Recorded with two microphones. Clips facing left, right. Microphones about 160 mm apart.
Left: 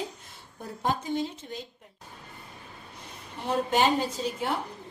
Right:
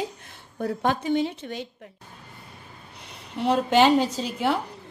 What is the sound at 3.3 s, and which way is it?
A woman's voice, 80° right.